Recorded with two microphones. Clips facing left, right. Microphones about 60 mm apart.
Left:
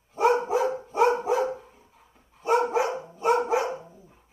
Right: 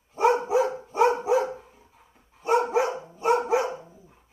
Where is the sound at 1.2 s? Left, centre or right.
Centre.